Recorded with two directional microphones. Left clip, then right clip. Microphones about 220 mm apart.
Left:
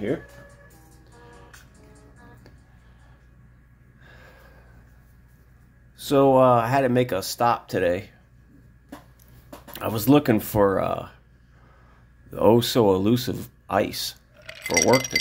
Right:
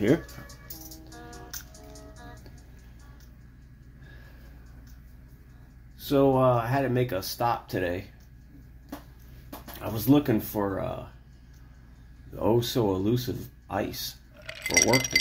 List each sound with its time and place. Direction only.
5.9 s speech: 40° left (ahead or behind)
9.8 s speech: 45° left (ahead or behind)
12.4 s speech: 45° left (ahead or behind)
14.3 s chink: centre (ahead or behind)